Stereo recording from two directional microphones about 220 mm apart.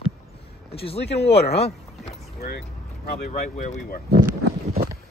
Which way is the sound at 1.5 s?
30° left (ahead or behind).